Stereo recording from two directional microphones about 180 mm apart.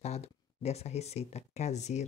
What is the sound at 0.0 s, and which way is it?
Speech, 35° left (ahead or behind).